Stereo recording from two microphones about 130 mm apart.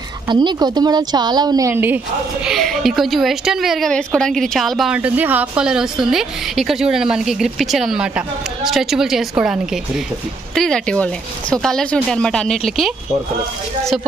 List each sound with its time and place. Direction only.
0.3 s a woman's voice: 35° right (ahead or behind)
1.7 s a woman's voice: 15° right (ahead or behind)
2.4 s a woman's voice: centre (ahead or behind)